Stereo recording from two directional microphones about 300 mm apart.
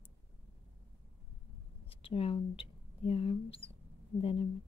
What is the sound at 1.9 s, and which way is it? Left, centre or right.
Speech, centre.